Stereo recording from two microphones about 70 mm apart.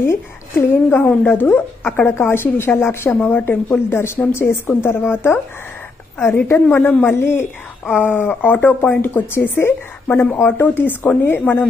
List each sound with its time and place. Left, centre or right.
0.0 s a woman's voice: left
8.1 s a woman's voice: left